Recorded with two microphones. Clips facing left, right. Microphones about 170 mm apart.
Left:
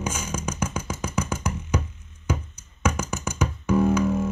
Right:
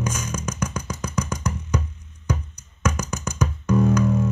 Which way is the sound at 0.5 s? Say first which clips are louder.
Even; 25° left (ahead or behind).